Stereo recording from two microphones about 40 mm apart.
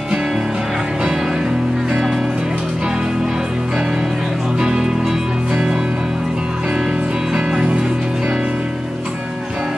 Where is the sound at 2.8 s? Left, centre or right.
Centre.